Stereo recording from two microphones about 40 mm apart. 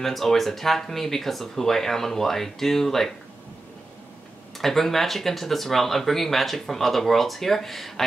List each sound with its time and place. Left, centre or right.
0.0 s speech: centre
4.6 s speech: centre